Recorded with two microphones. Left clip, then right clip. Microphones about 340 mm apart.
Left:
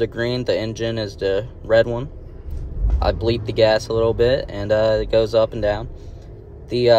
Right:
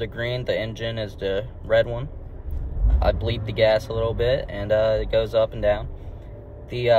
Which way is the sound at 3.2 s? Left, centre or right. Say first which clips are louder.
Left 6 dB; left.